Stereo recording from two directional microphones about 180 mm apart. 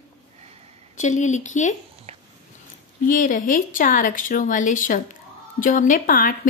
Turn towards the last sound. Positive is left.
turn(degrees=50)  # may be behind; listen again after turning